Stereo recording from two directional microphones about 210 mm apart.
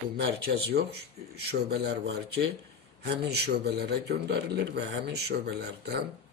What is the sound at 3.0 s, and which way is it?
A man's voice, 50° right (ahead or behind).